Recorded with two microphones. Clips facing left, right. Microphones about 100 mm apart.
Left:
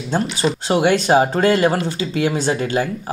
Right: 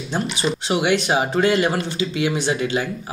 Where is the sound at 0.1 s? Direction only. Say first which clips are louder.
Left 4 dB; 45° left (ahead or behind).